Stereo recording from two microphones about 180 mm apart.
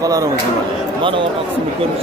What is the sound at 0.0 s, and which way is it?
Speech, 20° right (ahead or behind).